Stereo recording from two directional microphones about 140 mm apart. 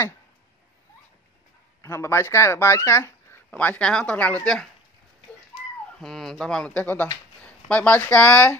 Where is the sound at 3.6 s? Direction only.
10° left (ahead or behind).